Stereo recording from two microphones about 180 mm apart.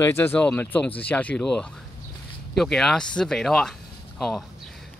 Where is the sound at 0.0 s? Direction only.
10° left (ahead or behind).